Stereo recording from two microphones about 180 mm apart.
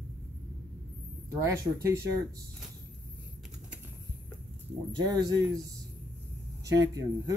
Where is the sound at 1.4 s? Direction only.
15° right (ahead or behind).